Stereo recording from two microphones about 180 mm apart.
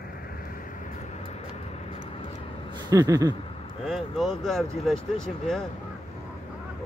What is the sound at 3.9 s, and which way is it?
Speech, centre (ahead or behind).